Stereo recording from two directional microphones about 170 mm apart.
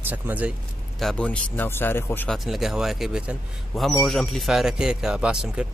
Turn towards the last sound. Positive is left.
turn(degrees=-5)  # may be behind; listen again after turning